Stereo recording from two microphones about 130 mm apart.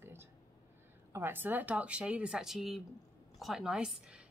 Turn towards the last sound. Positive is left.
turn(degrees=-10)  # may be behind; listen again after turning